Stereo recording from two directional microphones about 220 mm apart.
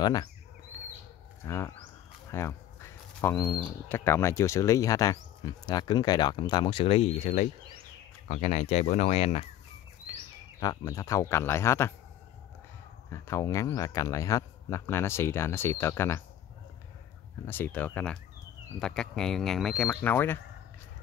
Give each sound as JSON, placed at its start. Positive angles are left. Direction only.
{"t": 0.0, "sound": "speech", "side_deg": 20}
{"t": 1.4, "sound": "speech", "side_deg": 15}
{"t": 2.3, "sound": "bird", "side_deg": 10}
{"t": 3.5, "sound": "speech", "side_deg": 10}
{"t": 10.6, "sound": "speech", "side_deg": 15}
{"t": 13.1, "sound": "speech", "side_deg": 15}
{"t": 17.5, "sound": "speech", "side_deg": 10}